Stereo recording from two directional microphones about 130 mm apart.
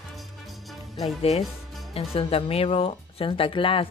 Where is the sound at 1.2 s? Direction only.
55° left (ahead or behind).